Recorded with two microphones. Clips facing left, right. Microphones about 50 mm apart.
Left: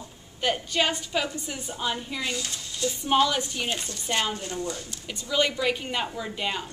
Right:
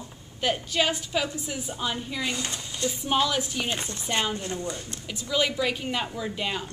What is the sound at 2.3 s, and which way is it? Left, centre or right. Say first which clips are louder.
Speech: right 1 dB; right.